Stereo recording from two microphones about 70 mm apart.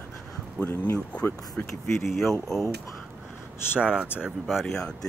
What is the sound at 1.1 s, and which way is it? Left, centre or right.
Speech, left.